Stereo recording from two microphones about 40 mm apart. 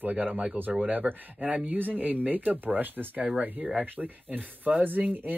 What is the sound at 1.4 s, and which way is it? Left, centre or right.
Speech, right.